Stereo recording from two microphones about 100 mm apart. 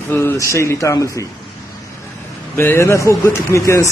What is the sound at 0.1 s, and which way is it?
A man's voice, 25° left (ahead or behind).